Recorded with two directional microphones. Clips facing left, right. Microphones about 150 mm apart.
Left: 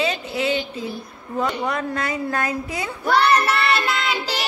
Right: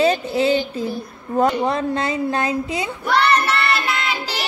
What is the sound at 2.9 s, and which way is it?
Child singing, centre (ahead or behind).